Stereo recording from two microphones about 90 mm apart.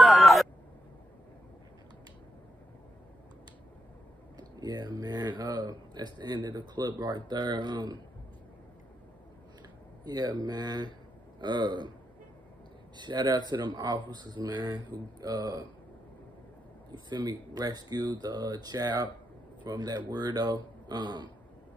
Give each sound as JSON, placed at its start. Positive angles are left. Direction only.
{"t": 0.0, "sound": "a sound", "side_deg": 0}
{"t": 4.4, "sound": "speech", "side_deg": -45}
{"t": 10.0, "sound": "speech", "side_deg": -45}
{"t": 12.9, "sound": "speech", "side_deg": -55}
{"t": 16.9, "sound": "speech", "side_deg": -55}